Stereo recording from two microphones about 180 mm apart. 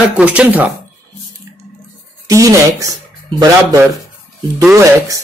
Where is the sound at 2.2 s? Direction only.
20° right (ahead or behind).